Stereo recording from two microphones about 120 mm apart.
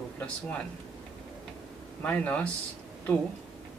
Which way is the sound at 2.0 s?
15° left (ahead or behind).